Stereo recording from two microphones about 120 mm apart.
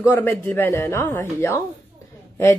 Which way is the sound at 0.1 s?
15° left (ahead or behind).